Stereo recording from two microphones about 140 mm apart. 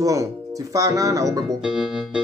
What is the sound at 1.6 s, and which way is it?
Organ, 5° right (ahead or behind).